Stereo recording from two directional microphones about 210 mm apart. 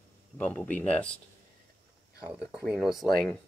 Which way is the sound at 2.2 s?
5° right (ahead or behind).